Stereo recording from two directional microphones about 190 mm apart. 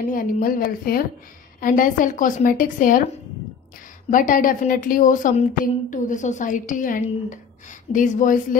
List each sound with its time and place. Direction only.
0.0 s a woman's voice: 45° left (ahead or behind)
4.1 s a woman's voice: 45° left (ahead or behind)